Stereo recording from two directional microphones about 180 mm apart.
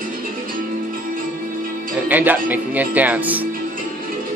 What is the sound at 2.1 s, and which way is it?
Speech, 10° right (ahead or behind).